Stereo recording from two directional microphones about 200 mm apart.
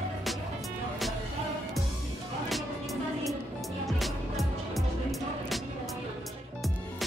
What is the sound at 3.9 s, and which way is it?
Music, centre (ahead or behind).